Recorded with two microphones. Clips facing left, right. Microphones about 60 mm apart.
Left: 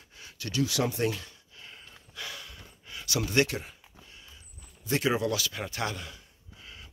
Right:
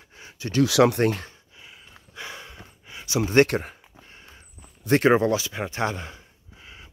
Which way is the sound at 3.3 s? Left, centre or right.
Right.